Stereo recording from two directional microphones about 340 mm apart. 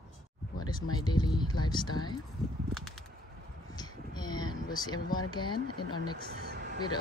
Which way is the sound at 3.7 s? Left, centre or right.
Centre.